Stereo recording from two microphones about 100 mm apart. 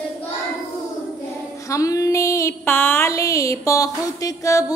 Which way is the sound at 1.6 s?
35° left (ahead or behind).